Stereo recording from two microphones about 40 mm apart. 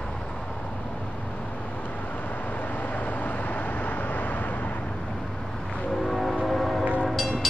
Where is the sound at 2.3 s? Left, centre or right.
Left.